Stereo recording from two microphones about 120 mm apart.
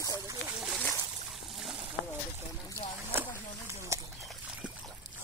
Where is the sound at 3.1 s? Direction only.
20° right (ahead or behind).